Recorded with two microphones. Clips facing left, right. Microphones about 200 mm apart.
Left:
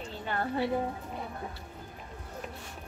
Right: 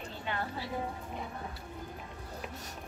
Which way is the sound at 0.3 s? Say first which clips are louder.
Left 7 dB; 50° left (ahead or behind).